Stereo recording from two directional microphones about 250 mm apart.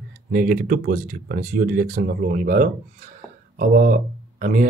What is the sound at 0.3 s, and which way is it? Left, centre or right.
Speech, right.